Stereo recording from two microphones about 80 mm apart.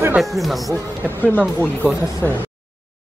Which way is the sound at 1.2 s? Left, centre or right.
Left.